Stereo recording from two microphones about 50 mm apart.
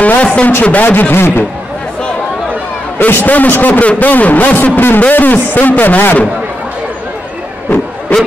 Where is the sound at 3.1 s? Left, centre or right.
Left.